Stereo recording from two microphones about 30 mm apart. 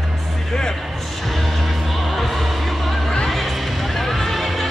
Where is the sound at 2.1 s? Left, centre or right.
Centre.